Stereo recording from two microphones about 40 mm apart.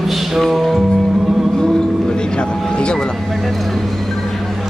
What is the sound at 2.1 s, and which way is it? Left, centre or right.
Vehicle, left.